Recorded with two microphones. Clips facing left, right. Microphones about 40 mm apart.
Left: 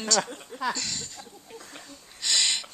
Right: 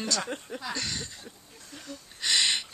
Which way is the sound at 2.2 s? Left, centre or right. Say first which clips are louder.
Right 1 dB; centre.